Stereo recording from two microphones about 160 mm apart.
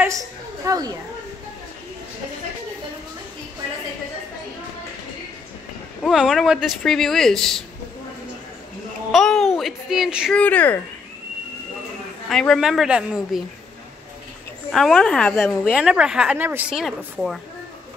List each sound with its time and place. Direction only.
0.7 s speech: 25° right (ahead or behind)
6.0 s speech: 5° right (ahead or behind)
9.1 s speech: centre (ahead or behind)
10.4 s speech: 10° left (ahead or behind)
12.3 s speech: centre (ahead or behind)
14.7 s speech: centre (ahead or behind)
15.6 s speech: 5° right (ahead or behind)